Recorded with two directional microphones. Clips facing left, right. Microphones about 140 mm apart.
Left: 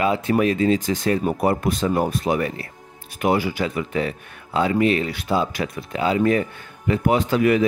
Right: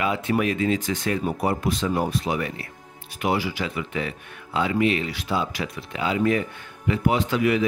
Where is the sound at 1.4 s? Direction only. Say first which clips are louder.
Left 4 dB; 55° left (ahead or behind).